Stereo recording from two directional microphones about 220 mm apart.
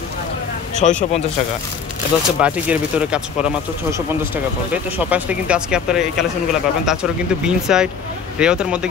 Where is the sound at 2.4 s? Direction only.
5° right (ahead or behind).